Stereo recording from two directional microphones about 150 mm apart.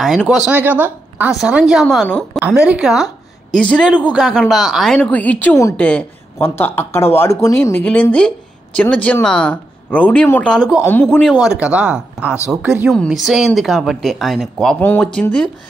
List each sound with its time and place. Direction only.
0.0 s a woman's voice: centre (ahead or behind)
0.5 s a woman's voice: 10° right (ahead or behind)
2.4 s a woman's voice: 10° right (ahead or behind)
4.1 s a woman's voice: centre (ahead or behind)
11.4 s a woman's voice: 5° right (ahead or behind)